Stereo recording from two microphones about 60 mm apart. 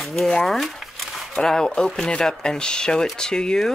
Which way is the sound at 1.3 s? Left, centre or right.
Centre.